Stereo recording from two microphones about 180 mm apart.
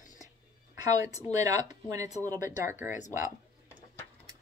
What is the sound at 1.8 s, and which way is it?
Speech, 20° right (ahead or behind).